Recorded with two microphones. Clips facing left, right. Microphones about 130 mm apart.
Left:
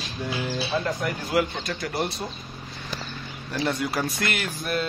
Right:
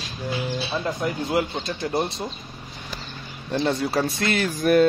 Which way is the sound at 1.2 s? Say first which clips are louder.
Right 1 dB; 25° right (ahead or behind).